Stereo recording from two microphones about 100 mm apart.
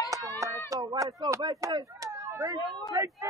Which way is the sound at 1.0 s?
35° right (ahead or behind).